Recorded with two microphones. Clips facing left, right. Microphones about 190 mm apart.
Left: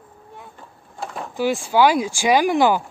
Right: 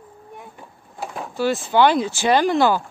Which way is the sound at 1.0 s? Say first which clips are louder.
Even; centre (ahead or behind).